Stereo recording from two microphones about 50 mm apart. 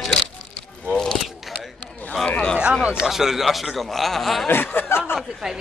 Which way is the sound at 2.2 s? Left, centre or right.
Centre.